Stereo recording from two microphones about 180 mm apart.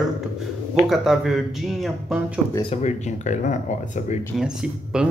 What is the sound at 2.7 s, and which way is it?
Speech, 40° left (ahead or behind).